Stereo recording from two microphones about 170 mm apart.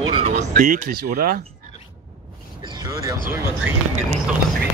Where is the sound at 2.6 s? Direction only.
20° right (ahead or behind).